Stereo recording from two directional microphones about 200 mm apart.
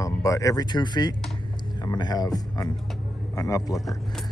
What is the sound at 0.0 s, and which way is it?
Speech, 15° left (ahead or behind).